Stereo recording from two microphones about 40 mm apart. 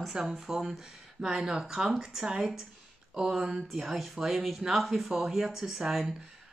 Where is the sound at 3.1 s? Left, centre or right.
Centre.